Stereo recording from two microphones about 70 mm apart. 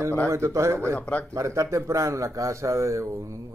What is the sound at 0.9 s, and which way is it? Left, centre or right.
Speech, centre.